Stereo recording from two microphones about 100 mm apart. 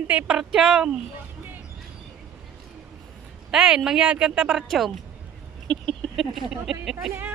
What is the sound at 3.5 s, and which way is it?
A woman's voice, 5° right (ahead or behind).